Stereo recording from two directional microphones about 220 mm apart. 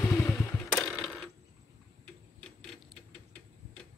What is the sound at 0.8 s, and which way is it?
Mechanisms, centre (ahead or behind).